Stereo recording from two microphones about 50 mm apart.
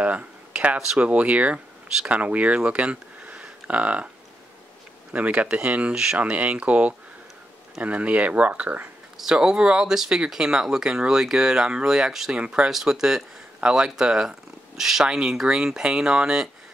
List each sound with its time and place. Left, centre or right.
0.0 s a sound: right
0.9 s speech: right
5.1 s speech: right
9.1 s speech: centre